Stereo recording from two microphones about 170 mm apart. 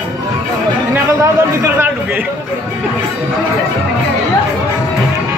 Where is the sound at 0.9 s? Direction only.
15° right (ahead or behind).